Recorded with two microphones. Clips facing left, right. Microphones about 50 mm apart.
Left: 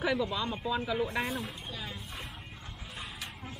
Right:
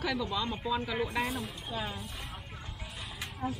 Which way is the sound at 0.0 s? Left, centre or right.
Centre.